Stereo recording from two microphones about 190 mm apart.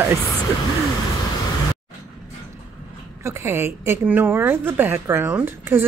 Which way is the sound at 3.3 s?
15° right (ahead or behind).